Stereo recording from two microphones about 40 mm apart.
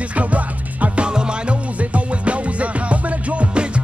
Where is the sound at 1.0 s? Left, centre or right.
Right.